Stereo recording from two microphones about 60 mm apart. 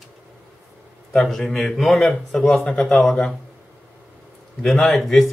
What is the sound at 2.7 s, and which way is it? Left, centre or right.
Speech, centre.